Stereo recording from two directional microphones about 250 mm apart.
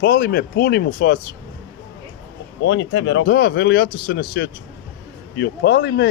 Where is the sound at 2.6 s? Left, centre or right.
Left.